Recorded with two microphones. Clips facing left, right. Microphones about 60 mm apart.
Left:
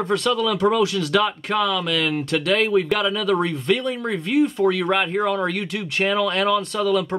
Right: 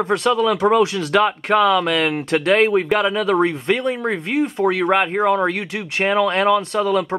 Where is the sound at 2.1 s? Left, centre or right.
Right.